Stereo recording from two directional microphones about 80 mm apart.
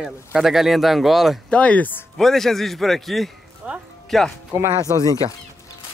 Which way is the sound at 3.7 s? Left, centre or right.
Centre.